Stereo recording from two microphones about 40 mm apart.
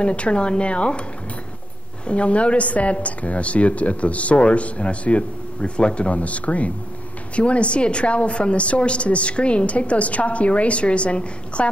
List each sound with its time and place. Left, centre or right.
0.0 s speech: left
2.0 s speech: left